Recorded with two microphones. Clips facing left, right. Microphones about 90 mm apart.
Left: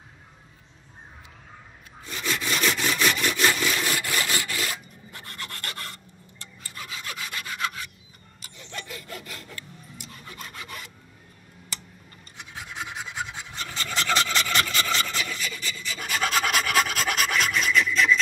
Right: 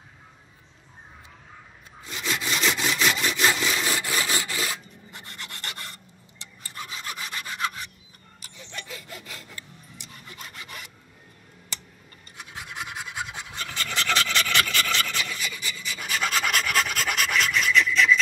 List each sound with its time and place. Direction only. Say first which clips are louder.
2.3 s sawing: even; 15° right (ahead or behind)
3.3 s wood: even; 5° right (ahead or behind)
3.5 s wood: even; 15° right (ahead or behind)
5.1 s filing: left 2 dB; 10° right (ahead or behind)
6.7 s sawing: right 1 dB; 30° right (ahead or behind)
9.0 s sawing: left 2 dB; 10° right (ahead or behind)
10.4 s rub: left 2 dB; centre (ahead or behind)
12.4 s scratch: even; 10° right (ahead or behind)
13.7 s filing: left 1 dB; 15° left (ahead or behind)
15.1 s filing: even; 5° right (ahead or behind)